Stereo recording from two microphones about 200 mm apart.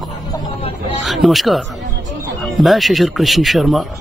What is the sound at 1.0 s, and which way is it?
Speech, centre (ahead or behind).